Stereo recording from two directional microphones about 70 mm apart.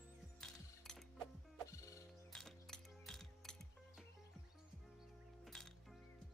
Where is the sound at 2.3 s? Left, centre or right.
Centre.